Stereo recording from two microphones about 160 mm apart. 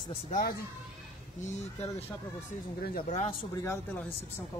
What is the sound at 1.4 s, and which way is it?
Speech, 45° left (ahead or behind).